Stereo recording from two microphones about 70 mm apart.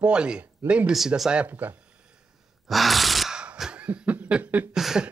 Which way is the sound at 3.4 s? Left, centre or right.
Centre.